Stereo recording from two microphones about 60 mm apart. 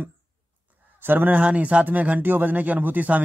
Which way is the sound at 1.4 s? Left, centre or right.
Right.